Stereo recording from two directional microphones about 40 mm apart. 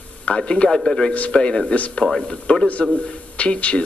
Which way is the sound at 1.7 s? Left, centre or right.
Left.